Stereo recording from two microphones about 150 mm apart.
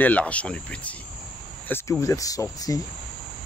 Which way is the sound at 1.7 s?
20° left (ahead or behind).